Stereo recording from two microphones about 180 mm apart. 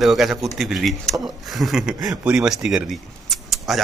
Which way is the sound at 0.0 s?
Centre (ahead or behind).